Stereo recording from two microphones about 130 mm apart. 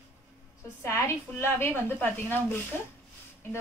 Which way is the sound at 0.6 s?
20° left (ahead or behind).